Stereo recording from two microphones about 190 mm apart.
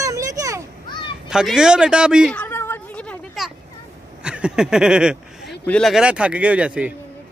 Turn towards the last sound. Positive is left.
turn(degrees=-5)  # may be behind; listen again after turning